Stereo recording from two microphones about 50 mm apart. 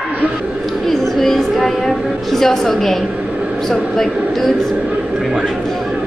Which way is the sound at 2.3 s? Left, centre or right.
Centre.